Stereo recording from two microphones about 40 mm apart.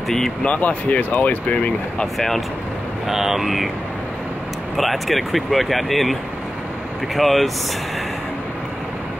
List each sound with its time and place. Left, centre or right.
0.6 s speech: left
2.1 s speech: centre
3.1 s speech: centre
4.7 s speech: centre
7.2 s speech: centre